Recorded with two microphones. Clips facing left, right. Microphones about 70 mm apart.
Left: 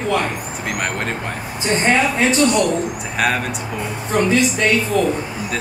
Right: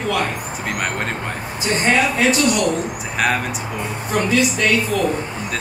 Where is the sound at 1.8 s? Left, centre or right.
Left.